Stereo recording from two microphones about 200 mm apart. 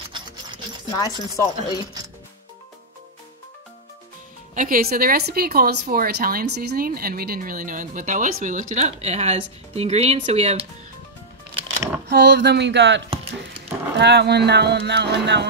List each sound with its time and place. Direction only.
0.9 s speech: 15° left (ahead or behind)
4.6 s a woman's voice: 45° right (ahead or behind)
12.1 s speech: 55° right (ahead or behind)